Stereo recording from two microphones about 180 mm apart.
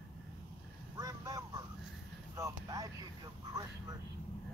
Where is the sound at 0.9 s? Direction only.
20° right (ahead or behind).